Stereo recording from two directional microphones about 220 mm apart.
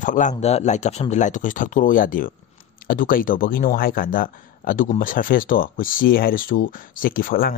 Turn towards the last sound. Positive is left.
turn(degrees=40)  # may be behind; listen again after turning